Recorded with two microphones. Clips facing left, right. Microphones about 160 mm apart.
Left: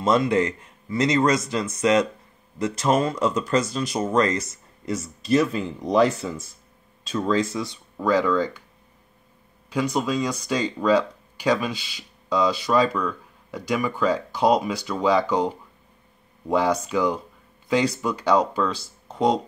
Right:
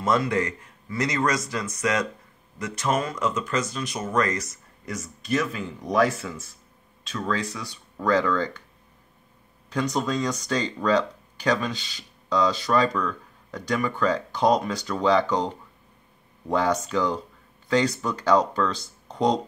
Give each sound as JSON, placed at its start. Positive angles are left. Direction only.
{"t": 0.0, "sound": "speech", "side_deg": 20}
{"t": 8.0, "sound": "speech", "side_deg": 10}
{"t": 9.7, "sound": "speech", "side_deg": 10}